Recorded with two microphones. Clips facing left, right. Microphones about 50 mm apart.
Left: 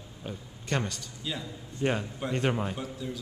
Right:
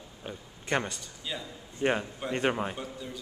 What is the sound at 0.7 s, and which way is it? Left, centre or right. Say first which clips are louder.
Speech: right 1 dB; centre.